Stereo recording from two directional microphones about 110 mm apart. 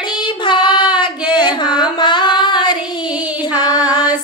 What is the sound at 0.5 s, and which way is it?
Child singing, 45° left (ahead or behind).